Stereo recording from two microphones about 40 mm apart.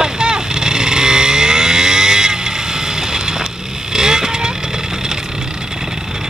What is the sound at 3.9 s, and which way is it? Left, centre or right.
Vehicle, centre.